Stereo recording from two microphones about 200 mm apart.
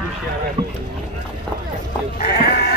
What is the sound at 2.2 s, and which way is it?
Sheep, 50° left (ahead or behind).